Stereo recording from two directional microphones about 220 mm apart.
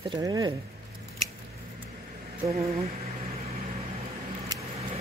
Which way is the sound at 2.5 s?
30° right (ahead or behind).